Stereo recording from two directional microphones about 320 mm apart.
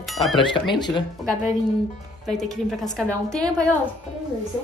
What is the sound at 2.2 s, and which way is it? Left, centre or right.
A woman's voice, centre.